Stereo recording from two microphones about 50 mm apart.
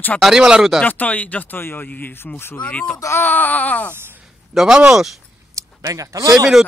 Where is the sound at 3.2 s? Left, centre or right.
Left.